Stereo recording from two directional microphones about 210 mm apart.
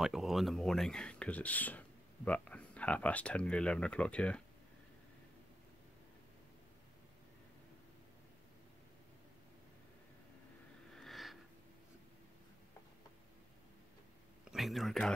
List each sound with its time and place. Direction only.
0.0 s speech: centre (ahead or behind)
10.9 s a sound: centre (ahead or behind)
14.5 s speech: centre (ahead or behind)